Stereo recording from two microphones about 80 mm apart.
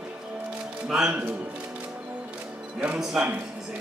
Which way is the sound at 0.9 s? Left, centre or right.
Centre.